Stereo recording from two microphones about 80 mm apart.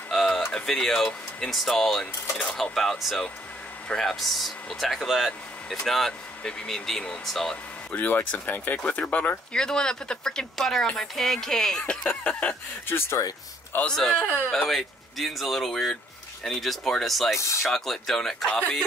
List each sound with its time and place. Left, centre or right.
0.1 s a sound: centre
0.5 s speech: centre
7.9 s speech: left
9.6 s speech: centre
12.1 s speech: left
12.9 s speech: left
13.9 s speech: centre